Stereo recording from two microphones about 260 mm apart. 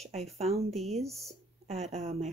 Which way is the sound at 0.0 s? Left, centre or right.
Right.